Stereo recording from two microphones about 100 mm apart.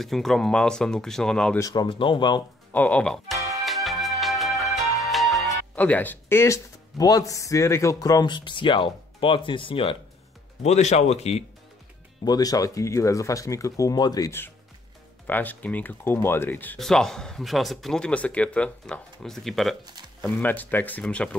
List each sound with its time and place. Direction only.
0.0 s speech: centre (ahead or behind)
1.6 s speech: 40° left (ahead or behind)
1.9 s speech: 55° left (ahead or behind)
2.7 s speech: 15° left (ahead or behind)
3.3 s music: 30° right (ahead or behind)
3.6 s music: centre (ahead or behind)
5.8 s speech: 15° left (ahead or behind); by 9.9 s 65° left (ahead or behind)
10.6 s speech: 90° left
12.3 s speech: 40° left (ahead or behind)
15.2 s speech: 15° left (ahead or behind)
16.7 s speech: 5° left (ahead or behind)
20.2 s speech: 15° left (ahead or behind)